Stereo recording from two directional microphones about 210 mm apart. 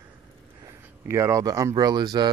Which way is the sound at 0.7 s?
15° right (ahead or behind).